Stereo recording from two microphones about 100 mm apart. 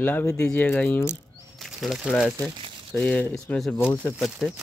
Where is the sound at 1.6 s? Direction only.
Centre (ahead or behind).